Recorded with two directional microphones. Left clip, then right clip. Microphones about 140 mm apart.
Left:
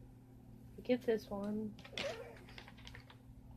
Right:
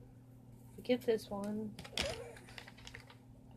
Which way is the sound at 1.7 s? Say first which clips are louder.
Right 4 dB; 65° right (ahead or behind).